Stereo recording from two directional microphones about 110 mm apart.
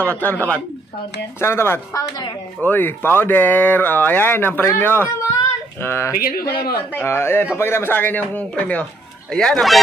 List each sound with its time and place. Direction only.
0.0 s speech: 15° left (ahead or behind)